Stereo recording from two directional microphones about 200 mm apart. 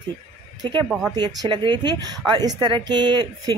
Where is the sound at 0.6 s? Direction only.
25° right (ahead or behind).